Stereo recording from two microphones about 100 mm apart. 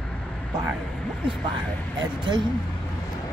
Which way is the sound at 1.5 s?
50° right (ahead or behind).